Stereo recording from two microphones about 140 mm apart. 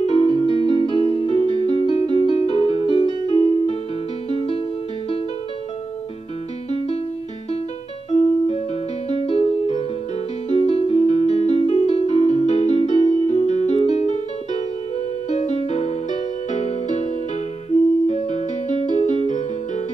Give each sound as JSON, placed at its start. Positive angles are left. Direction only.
{"t": 0.0, "sound": "music", "side_deg": 45}
{"t": 8.1, "sound": "music", "side_deg": 50}